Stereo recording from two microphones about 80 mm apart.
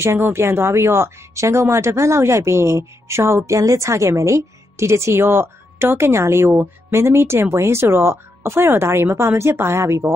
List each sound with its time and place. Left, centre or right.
0.0 s speech: right